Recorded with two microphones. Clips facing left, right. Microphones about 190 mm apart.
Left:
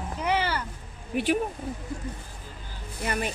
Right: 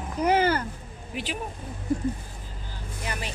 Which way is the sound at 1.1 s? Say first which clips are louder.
Left 9 dB; 60° left (ahead or behind).